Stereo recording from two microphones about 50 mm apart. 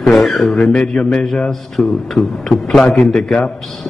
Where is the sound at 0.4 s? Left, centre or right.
Centre.